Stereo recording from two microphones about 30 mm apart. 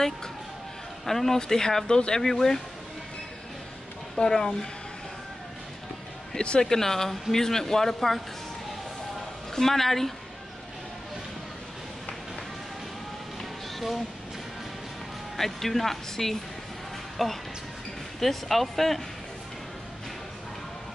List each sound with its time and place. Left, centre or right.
1.0 s speech: centre
2.3 s speech: centre
4.2 s speech: left
6.6 s speech: centre
9.6 s speech: centre
13.7 s speech: centre
15.3 s speech: centre